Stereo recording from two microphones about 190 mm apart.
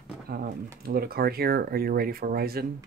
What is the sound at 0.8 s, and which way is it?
Speech, 55° right (ahead or behind).